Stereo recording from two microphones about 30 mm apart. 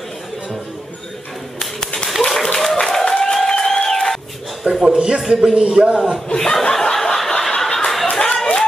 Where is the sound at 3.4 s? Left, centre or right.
Centre.